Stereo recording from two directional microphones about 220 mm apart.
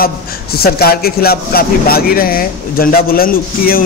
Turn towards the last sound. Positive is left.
turn(degrees=40)  # may be behind; listen again after turning